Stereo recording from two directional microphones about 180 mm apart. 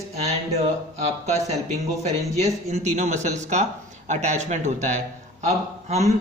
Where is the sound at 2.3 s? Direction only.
40° right (ahead or behind).